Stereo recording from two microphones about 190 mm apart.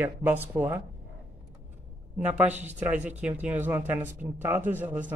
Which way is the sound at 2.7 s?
10° right (ahead or behind).